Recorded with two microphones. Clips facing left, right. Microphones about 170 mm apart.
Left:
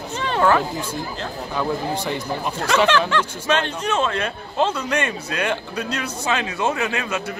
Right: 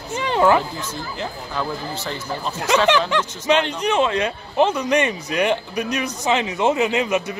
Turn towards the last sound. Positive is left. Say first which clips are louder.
# right 5 dB
turn(degrees=-20)  # may be behind; listen again after turning